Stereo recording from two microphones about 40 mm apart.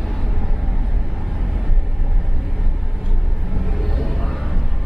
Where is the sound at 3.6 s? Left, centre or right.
Centre.